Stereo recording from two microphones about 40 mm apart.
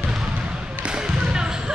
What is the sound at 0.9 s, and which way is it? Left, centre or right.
Basketball bounce, centre.